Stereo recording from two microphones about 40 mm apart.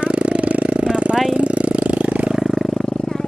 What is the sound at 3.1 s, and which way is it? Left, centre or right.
Vehicle, left.